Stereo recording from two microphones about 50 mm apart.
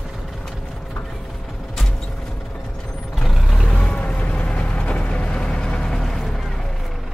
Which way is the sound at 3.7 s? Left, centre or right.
Left.